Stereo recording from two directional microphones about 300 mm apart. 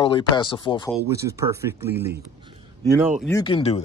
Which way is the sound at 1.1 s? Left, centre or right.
Centre.